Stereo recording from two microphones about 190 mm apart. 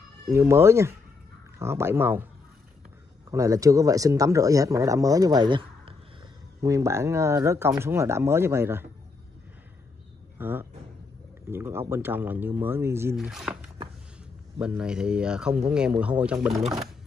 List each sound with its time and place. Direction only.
0.3 s speech: 15° right (ahead or behind)
3.3 s speech: 15° right (ahead or behind)
6.6 s speech: 15° right (ahead or behind)
10.3 s speech: 10° right (ahead or behind)
13.1 s speech: centre (ahead or behind)